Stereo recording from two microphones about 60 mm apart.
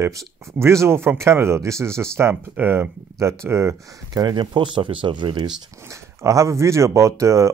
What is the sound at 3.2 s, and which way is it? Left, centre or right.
Speech, right.